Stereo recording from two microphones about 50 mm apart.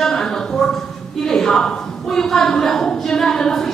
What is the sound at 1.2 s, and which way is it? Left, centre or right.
A woman's voice, centre.